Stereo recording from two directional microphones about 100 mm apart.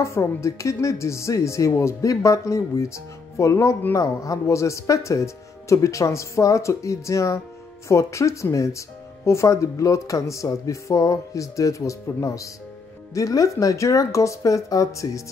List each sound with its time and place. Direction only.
0.0 s speech: 30° left (ahead or behind)